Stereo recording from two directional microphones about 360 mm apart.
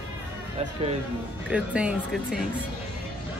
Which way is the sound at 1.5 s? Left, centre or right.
Centre.